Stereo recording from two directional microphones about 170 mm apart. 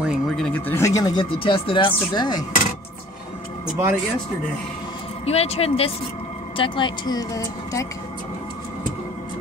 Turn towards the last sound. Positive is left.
turn(degrees=20)  # may be behind; listen again after turning